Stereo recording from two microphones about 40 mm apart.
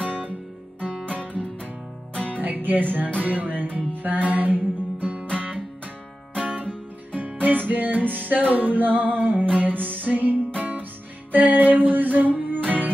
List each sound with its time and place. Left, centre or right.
1.2 s music: left
2.4 s music: right
5.2 s music: left
6.3 s music: right